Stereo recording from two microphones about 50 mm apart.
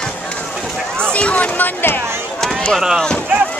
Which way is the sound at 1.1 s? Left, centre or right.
Left.